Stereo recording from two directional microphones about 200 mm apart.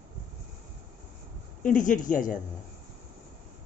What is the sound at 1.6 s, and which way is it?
Speech, 40° left (ahead or behind).